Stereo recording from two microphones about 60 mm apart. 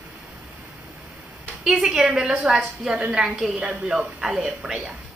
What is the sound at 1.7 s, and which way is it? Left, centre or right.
Speech, centre.